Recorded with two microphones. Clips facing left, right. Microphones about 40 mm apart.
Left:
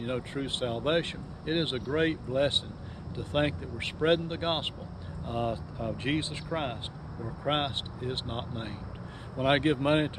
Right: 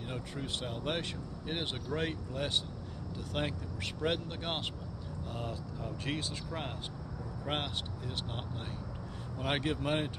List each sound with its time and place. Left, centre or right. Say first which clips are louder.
0.0 s speech: left 7 dB; left